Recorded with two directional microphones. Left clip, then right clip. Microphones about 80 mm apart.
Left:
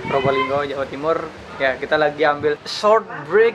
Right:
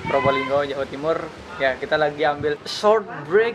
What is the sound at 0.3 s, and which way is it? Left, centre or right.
Speech, centre.